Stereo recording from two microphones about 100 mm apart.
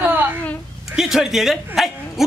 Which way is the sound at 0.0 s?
20° right (ahead or behind).